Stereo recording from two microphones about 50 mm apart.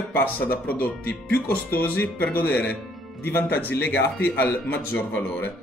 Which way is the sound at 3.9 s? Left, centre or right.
Left.